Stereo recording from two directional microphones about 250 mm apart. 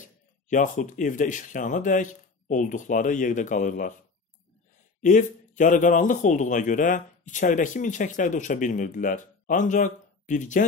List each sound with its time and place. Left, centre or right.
0.0 s a man's voice: left
5.0 s a man's voice: left